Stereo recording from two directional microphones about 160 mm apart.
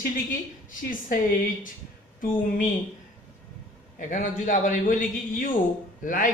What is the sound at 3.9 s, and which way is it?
A man's voice, 55° left (ahead or behind).